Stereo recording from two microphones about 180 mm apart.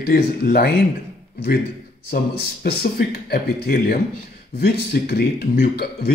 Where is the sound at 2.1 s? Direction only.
60° left (ahead or behind).